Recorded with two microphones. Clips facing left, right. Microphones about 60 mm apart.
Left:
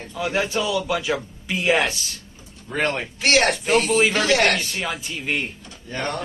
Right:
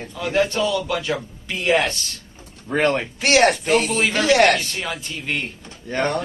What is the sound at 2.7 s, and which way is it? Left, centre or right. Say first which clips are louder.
Speech: right 4 dB; right.